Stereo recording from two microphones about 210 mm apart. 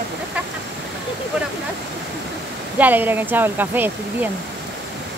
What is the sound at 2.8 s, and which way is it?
Speech, 10° right (ahead or behind).